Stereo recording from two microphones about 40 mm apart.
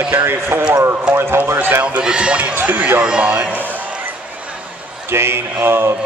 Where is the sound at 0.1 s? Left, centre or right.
Right.